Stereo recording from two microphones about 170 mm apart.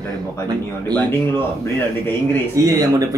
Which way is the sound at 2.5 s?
20° right (ahead or behind).